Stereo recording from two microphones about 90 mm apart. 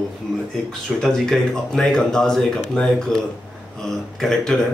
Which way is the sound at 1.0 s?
5° left (ahead or behind).